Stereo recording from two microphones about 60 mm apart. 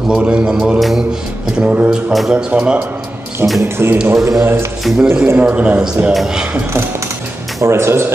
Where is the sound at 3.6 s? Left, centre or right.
Right.